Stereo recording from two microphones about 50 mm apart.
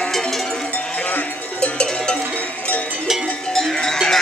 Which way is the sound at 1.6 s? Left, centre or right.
Centre.